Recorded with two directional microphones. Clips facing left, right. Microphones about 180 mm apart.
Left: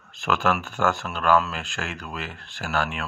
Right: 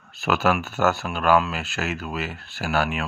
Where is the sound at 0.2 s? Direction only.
5° right (ahead or behind).